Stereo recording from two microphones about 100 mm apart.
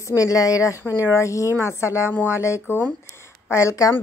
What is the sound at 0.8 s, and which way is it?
Speech, 20° right (ahead or behind).